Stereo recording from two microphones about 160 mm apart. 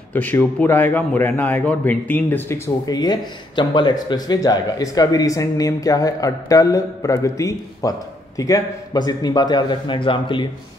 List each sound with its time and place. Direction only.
0.1 s a man's voice: 10° left (ahead or behind); by 10.5 s 30° left (ahead or behind)